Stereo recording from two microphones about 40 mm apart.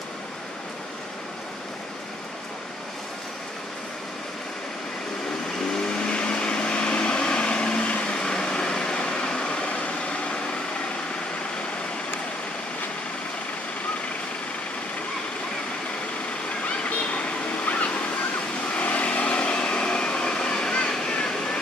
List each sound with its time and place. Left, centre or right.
5.7 s vehicle: left
16.6 s a sound: left
18.8 s vehicle: left; by 21.5 s centre